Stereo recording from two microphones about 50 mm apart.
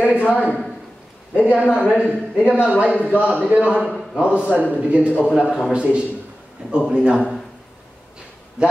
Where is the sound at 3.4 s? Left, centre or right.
Right.